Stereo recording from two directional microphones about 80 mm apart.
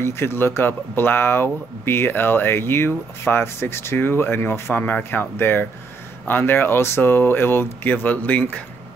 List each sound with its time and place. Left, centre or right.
0.0 s speech: left